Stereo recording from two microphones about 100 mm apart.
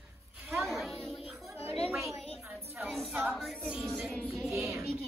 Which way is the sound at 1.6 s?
90° left.